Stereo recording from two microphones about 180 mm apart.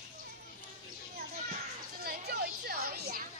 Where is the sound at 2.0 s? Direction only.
60° right (ahead or behind).